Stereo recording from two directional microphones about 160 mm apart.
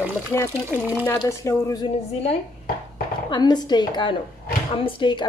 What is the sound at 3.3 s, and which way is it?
A woman's voice, 25° left (ahead or behind).